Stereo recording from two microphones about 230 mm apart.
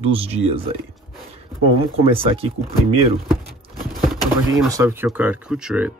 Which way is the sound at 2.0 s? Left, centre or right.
Right.